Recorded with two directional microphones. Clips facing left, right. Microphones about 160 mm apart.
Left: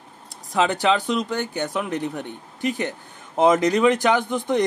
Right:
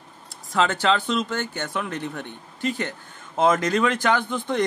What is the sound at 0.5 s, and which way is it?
Speech, 15° left (ahead or behind).